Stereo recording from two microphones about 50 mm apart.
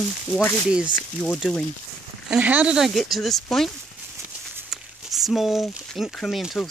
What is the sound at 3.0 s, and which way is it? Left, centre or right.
Speech, centre.